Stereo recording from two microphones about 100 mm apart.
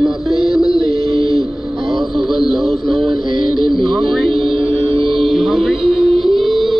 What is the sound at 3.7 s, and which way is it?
Music, 60° right (ahead or behind).